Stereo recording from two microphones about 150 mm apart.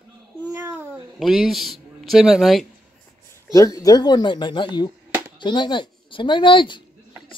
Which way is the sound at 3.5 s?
25° left (ahead or behind).